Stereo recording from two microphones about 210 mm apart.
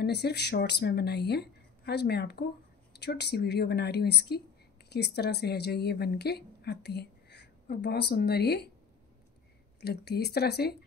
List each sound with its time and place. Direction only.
0.0 s a woman's voice: 50° left (ahead or behind)
9.8 s speech: 50° left (ahead or behind)